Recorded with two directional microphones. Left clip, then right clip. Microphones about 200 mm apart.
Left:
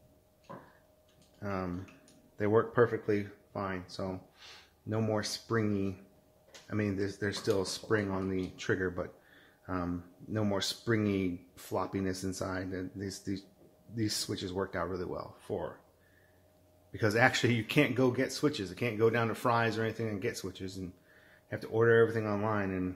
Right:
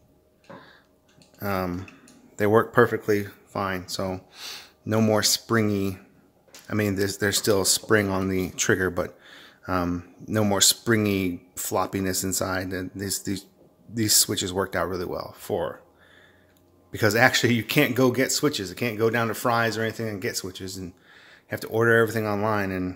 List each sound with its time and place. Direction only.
1.4 s speech: 35° right (ahead or behind)
16.9 s speech: 30° right (ahead or behind)